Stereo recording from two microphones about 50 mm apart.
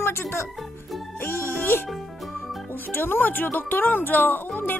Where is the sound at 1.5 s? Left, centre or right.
Left.